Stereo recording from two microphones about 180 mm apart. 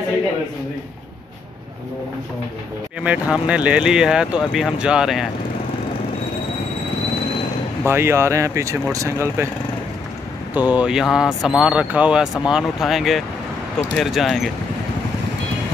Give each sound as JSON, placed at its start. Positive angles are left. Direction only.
{"t": 3.0, "sound": "speech", "side_deg": -5}
{"t": 7.8, "sound": "speech", "side_deg": -15}
{"t": 10.5, "sound": "speech", "side_deg": -10}